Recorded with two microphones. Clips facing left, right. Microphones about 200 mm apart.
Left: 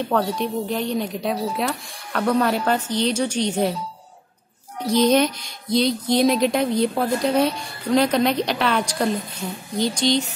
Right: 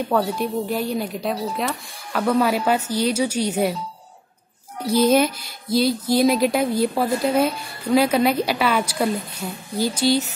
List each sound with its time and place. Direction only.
0.1 s speech: 5° right (ahead or behind)
4.8 s speech: 5° right (ahead or behind)